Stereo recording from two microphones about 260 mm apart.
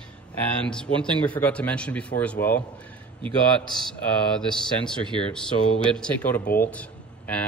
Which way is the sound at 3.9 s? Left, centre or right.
Centre.